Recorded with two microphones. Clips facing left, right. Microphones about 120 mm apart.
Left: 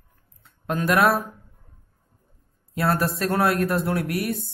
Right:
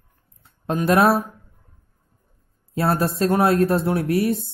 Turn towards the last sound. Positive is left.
turn(degrees=-25)  # may be behind; listen again after turning